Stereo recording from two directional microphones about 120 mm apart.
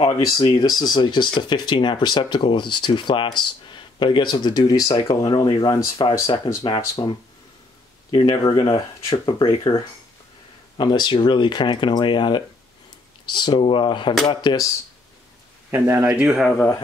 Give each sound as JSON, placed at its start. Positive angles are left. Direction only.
{"t": 0.4, "sound": "speech", "side_deg": 35}
{"t": 10.8, "sound": "speech", "side_deg": 40}
{"t": 15.7, "sound": "speech", "side_deg": -20}